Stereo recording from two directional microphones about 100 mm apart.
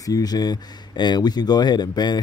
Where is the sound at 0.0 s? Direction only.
40° left (ahead or behind).